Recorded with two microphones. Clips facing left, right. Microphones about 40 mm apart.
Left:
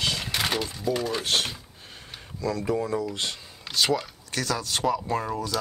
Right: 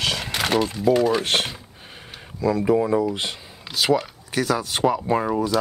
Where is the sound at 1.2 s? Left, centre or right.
Right.